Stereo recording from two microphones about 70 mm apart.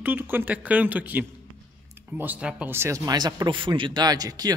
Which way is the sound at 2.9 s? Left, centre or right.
Right.